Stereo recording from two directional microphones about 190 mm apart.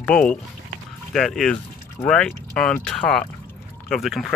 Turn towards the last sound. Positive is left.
turn(degrees=0)  # may be behind; listen again after turning